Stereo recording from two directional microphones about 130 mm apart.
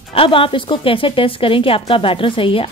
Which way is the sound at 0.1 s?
45° left (ahead or behind).